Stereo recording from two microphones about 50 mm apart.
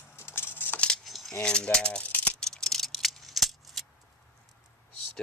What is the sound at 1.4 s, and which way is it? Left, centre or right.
Rattle, centre.